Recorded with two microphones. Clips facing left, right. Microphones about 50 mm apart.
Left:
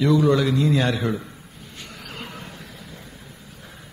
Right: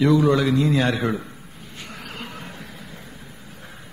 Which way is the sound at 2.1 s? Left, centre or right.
Centre.